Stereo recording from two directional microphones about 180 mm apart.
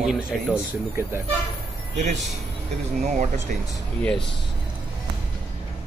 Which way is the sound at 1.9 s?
40° right (ahead or behind).